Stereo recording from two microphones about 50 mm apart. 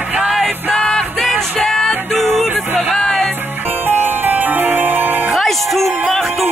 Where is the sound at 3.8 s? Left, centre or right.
Right.